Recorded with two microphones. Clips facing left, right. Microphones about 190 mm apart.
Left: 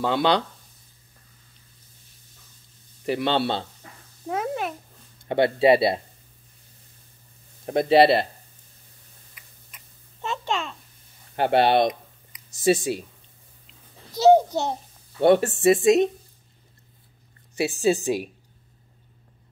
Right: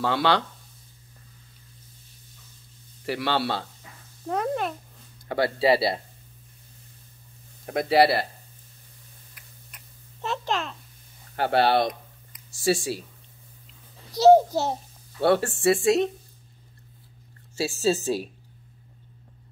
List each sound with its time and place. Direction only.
0.0 s speech: 20° left (ahead or behind)
3.1 s speech: 20° left (ahead or behind)
4.3 s a child's voice: 5° left (ahead or behind)
5.3 s speech: 20° left (ahead or behind)
7.6 s speech: 25° left (ahead or behind)
9.3 s a sound: centre (ahead or behind)
11.3 s speech: 20° left (ahead or behind)
14.1 s a child's voice: centre (ahead or behind)
15.1 s speech: 20° left (ahead or behind)
17.6 s speech: 15° left (ahead or behind)